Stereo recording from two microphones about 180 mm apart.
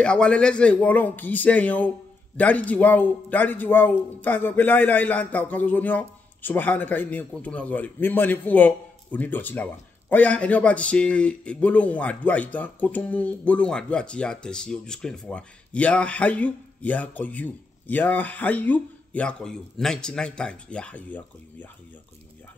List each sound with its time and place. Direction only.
0.0 s a man's voice: 5° left (ahead or behind)